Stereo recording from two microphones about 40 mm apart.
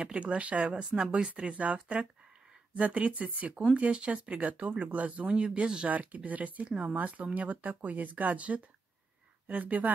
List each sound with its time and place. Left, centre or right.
0.0 s speech: right
0.7 s speech: right
5.3 s speech: right
5.9 s speech: right